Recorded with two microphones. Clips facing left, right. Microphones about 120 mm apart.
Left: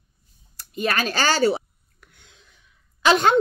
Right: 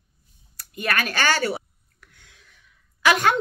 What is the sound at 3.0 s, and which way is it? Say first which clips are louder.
Speech: left 2 dB; 25° left (ahead or behind).